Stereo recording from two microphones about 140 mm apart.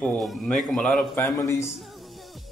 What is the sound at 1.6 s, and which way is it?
Music, centre (ahead or behind).